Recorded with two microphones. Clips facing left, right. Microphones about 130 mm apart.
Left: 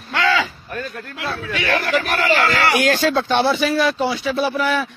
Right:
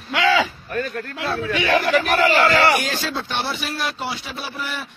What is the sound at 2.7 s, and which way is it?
A man's voice, 70° left (ahead or behind).